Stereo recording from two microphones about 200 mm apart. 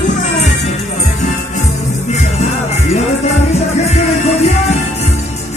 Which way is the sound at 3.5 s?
35° left (ahead or behind).